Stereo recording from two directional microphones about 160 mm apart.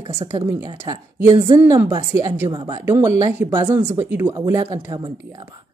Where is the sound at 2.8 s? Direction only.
15° right (ahead or behind).